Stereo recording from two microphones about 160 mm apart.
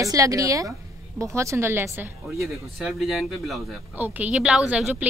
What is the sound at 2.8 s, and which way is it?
Speech, centre (ahead or behind).